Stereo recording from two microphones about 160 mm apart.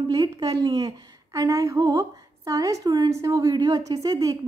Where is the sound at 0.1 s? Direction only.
25° right (ahead or behind).